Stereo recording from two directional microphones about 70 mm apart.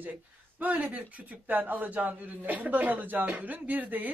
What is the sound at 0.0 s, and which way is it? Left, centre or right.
Speech, right.